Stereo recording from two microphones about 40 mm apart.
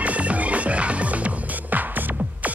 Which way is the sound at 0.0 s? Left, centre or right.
Right.